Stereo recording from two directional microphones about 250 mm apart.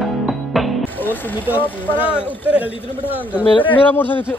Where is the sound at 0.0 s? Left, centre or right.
Centre.